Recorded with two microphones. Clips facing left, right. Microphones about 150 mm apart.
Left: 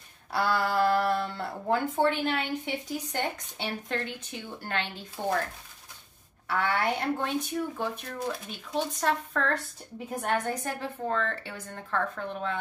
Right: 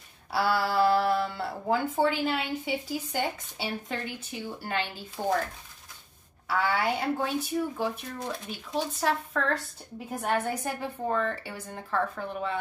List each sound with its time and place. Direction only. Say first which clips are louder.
0.3 s a woman's voice: right 1 dB; 5° right (ahead or behind)
6.4 s a woman's voice: right 1 dB; 5° right (ahead or behind)